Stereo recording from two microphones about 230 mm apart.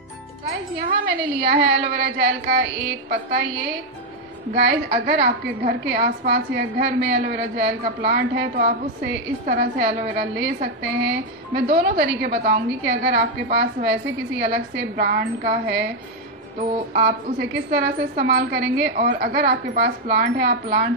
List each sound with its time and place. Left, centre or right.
0.8 s a woman's voice: right
16.9 s a woman's voice: right